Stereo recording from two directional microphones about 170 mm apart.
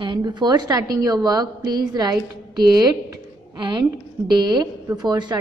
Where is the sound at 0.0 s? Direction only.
25° right (ahead or behind).